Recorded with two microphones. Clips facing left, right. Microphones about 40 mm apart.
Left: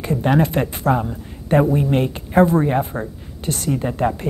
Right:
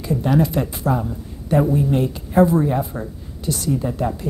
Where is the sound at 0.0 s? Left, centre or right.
Left.